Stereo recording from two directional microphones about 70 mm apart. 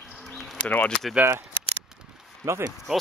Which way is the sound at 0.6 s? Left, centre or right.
Left.